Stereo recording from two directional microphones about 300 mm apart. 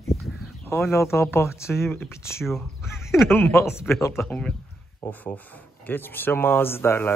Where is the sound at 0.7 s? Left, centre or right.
Centre.